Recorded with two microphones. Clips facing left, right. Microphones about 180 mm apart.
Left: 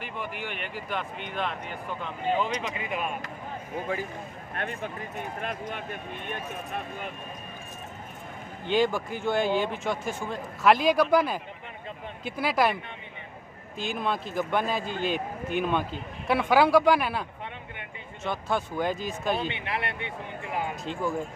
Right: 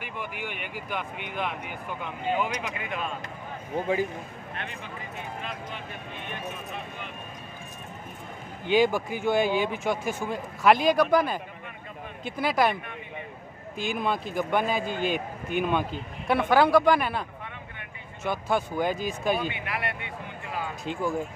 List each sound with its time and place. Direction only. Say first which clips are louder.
0.0 s speech: even; 5° right (ahead or behind)
4.6 s speech: left 7 dB; 45° left (ahead or behind)
8.6 s speech: right 2 dB; 5° right (ahead or behind)
13.7 s speech: right 1 dB; centre (ahead or behind)
18.2 s speech: right 2 dB; 5° right (ahead or behind)
19.3 s speech: even; 25° left (ahead or behind)
20.8 s speech: right 1 dB; 5° right (ahead or behind)